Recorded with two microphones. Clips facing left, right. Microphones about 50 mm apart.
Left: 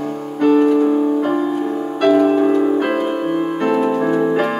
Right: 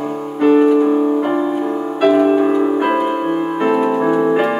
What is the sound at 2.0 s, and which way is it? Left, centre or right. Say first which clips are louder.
Music: right 1 dB; centre.